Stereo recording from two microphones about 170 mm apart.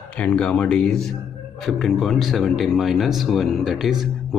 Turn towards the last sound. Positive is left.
turn(degrees=0)  # may be behind; listen again after turning